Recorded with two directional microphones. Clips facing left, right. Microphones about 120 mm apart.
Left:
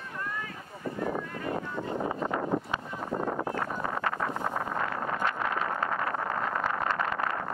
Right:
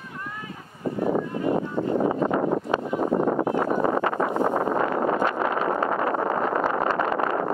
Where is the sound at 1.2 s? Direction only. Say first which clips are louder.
Right 9 dB; 25° right (ahead or behind).